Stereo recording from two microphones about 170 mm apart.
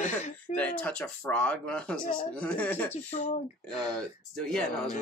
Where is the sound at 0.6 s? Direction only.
5° left (ahead or behind).